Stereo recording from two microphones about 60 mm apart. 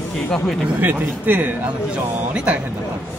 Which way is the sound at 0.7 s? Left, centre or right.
Right.